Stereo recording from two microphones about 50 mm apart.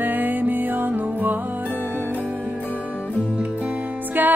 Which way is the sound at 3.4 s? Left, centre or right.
Right.